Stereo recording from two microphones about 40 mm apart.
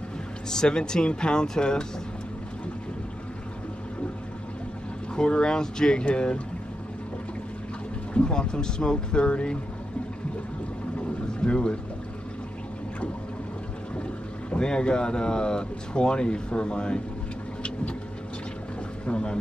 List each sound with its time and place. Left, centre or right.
0.5 s speech: centre
5.1 s speech: left
6.0 s speech: left
8.1 s speech: left
11.0 s boat: left
14.5 s speech: left
19.0 s boat: left